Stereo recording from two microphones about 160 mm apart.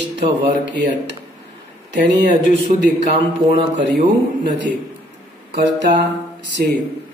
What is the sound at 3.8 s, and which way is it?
Speech, 90° right.